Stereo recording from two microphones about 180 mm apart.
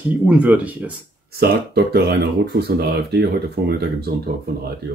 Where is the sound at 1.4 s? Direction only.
65° right (ahead or behind).